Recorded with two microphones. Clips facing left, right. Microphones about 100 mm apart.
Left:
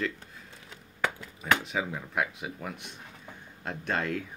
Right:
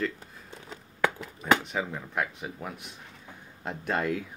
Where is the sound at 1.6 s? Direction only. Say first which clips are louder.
Even; 5° left (ahead or behind).